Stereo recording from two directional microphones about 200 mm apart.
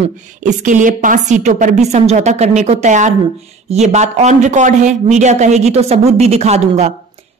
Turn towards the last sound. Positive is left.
turn(degrees=-35)  # may be behind; listen again after turning